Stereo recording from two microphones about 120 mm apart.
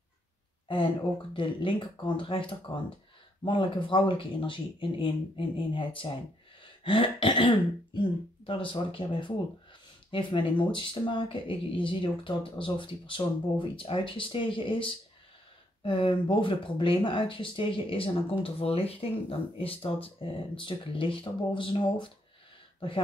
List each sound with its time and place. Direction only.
1.3 s speech: 45° left (ahead or behind)